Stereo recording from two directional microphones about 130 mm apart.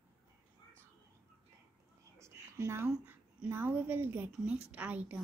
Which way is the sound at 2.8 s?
5° right (ahead or behind).